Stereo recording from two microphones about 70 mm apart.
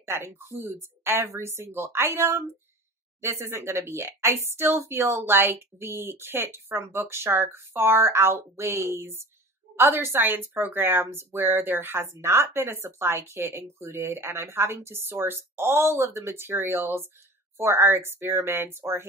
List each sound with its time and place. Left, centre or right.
0.0 s a woman's voice: right